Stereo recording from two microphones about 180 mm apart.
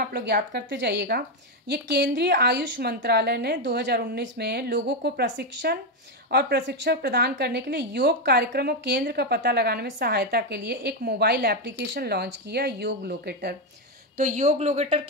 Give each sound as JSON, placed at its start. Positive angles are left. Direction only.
{"t": 0.0, "sound": "a woman's voice", "side_deg": -60}
{"t": 14.1, "sound": "speech", "side_deg": -45}